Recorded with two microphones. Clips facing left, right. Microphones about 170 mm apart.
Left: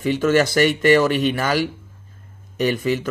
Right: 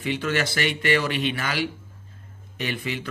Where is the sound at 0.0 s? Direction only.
45° left (ahead or behind).